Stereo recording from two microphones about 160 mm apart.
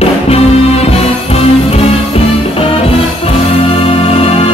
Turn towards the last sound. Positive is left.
turn(degrees=35)  # may be behind; listen again after turning